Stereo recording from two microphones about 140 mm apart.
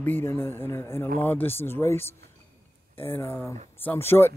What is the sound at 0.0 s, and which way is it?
Speech, 15° left (ahead or behind).